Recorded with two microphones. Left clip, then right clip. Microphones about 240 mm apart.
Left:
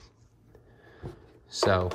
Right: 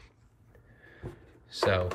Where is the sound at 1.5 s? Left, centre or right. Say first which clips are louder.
Left 2 dB; centre.